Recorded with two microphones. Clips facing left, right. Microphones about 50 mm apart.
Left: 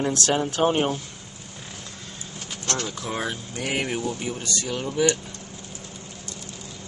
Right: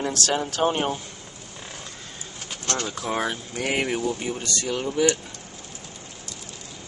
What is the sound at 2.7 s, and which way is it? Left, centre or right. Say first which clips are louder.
Speech: right 2 dB; centre.